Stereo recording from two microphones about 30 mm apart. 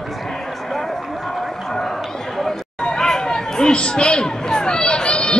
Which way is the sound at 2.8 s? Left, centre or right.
Left.